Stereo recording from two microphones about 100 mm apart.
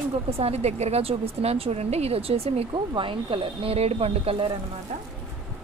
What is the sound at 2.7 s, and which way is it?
Speech, 55° right (ahead or behind).